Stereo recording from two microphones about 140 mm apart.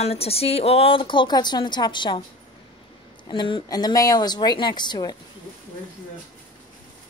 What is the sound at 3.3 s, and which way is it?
Speech, 35° left (ahead or behind).